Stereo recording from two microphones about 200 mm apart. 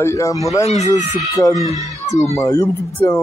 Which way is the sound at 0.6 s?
35° left (ahead or behind).